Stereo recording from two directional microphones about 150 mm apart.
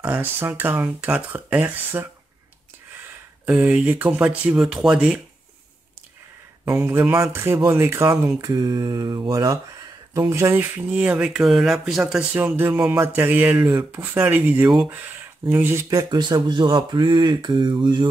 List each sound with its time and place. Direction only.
0.0 s speech: 10° right (ahead or behind)
3.4 s speech: 10° right (ahead or behind)
6.6 s speech: 20° right (ahead or behind); by 12.3 s 5° right (ahead or behind)
12.4 s speech: 15° right (ahead or behind); by 18.0 s 30° right (ahead or behind)